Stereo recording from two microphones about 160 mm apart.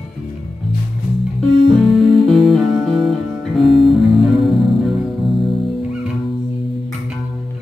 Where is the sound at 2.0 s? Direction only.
Centre (ahead or behind).